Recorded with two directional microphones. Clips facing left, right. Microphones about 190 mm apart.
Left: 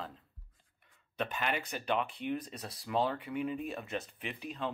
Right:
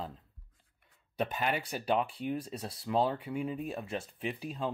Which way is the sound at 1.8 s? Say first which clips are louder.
Right 3 dB; 35° right (ahead or behind).